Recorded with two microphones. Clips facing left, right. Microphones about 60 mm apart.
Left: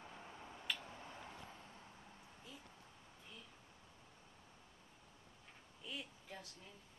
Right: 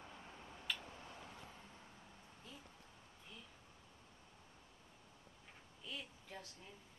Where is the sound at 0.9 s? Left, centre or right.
Left.